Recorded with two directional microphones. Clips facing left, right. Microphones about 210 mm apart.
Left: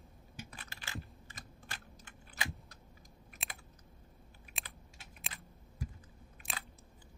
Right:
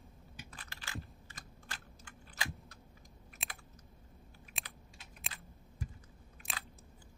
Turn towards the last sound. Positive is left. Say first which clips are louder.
# left 1 dB
turn(degrees=0)  # may be behind; listen again after turning